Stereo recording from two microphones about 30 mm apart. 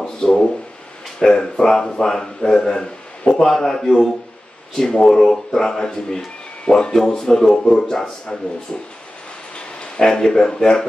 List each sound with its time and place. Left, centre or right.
0.2 s a sound: left
1.2 s a man's voice: left
9.9 s speech: left